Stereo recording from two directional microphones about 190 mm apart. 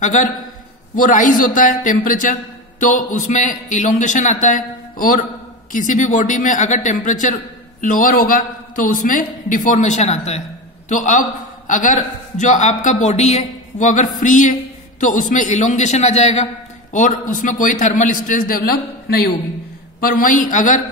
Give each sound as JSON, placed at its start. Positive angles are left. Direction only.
{"t": 0.0, "sound": "a man's voice", "side_deg": 40}
{"t": 20.0, "sound": "a woman's voice", "side_deg": 50}